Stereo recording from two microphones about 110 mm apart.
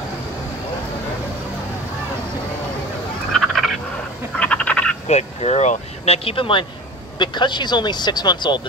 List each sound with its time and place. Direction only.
3.3 s a sound: centre (ahead or behind)
4.4 s frog: 10° left (ahead or behind)
5.0 s speech: 75° left (ahead or behind); by 8.6 s 45° left (ahead or behind)